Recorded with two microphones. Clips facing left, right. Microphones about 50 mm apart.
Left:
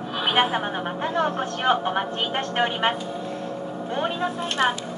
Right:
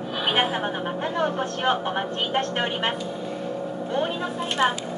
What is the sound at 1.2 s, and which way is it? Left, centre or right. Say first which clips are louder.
A woman's voice: even; centre.